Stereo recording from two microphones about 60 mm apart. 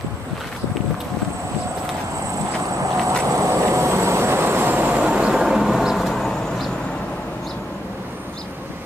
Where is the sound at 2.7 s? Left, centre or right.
Right.